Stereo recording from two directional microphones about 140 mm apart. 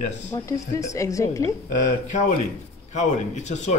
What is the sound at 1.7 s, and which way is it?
A man's voice, 65° left (ahead or behind).